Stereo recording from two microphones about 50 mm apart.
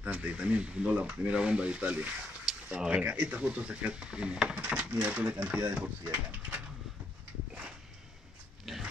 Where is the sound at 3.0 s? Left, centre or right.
Right.